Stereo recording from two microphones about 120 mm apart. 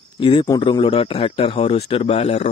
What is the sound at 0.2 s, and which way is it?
A man's voice, 45° left (ahead or behind).